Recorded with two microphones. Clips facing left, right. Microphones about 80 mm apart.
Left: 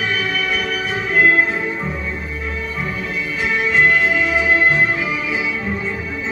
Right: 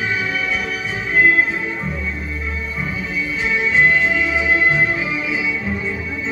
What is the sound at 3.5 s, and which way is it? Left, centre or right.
Music, left.